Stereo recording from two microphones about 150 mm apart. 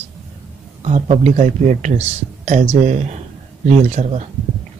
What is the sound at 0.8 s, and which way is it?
Speech, 45° right (ahead or behind).